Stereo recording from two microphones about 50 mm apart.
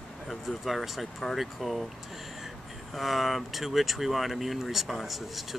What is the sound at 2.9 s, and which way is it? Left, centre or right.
Speech, centre.